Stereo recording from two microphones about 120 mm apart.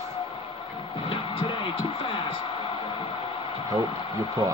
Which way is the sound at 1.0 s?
45° left (ahead or behind).